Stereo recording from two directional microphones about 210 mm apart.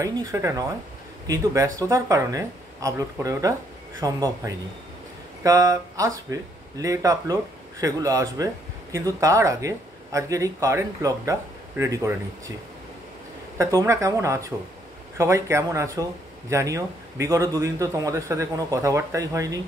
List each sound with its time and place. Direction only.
0.0 s speech: 15° right (ahead or behind)
13.6 s speech: 15° right (ahead or behind)